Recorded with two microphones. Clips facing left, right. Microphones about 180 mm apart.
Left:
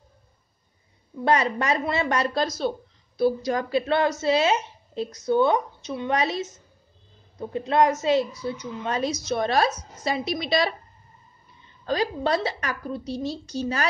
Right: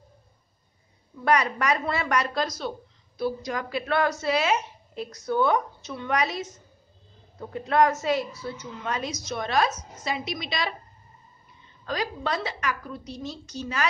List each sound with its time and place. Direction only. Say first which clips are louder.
1.2 s a woman's voice: left 1 dB; 25° left (ahead or behind)
8.8 s a woman's voice: left 5 dB; 30° left (ahead or behind)
11.8 s a woman's voice: left 5 dB; 30° left (ahead or behind)